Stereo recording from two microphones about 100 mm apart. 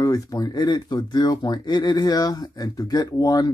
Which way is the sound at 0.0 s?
35° left (ahead or behind).